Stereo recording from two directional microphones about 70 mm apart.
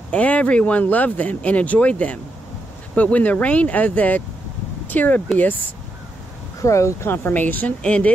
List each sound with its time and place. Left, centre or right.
0.1 s speech: centre
6.6 s speech: left; by 8.1 s centre